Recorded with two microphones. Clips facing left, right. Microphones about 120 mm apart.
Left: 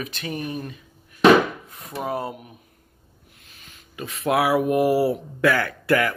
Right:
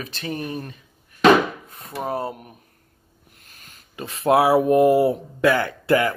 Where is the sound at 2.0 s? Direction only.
30° right (ahead or behind).